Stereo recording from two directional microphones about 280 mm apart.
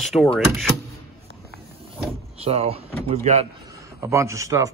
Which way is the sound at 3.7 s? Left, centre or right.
Centre.